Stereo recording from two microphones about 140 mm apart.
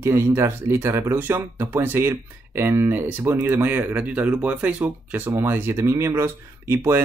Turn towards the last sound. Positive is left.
turn(degrees=-20)  # may be behind; listen again after turning